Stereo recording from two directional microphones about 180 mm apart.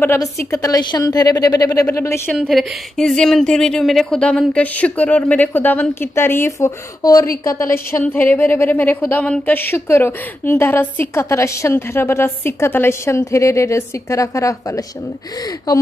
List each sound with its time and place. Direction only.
0.0 s a woman's voice: 15° left (ahead or behind)
2.3 s a woman's voice: centre (ahead or behind); by 14.5 s 20° left (ahead or behind)